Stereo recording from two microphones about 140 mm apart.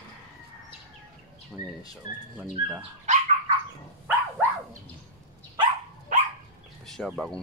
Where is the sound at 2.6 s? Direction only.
90° left.